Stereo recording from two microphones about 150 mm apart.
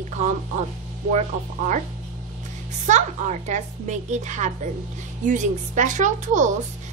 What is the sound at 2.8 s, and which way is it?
A woman's voice, 50° right (ahead or behind).